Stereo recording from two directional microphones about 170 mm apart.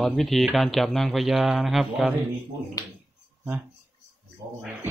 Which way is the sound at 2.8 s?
20° left (ahead or behind).